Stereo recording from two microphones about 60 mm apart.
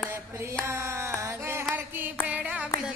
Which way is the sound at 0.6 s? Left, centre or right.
Right.